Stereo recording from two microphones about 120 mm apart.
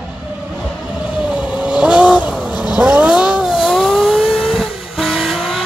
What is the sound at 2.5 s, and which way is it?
Vehicle, 35° left (ahead or behind).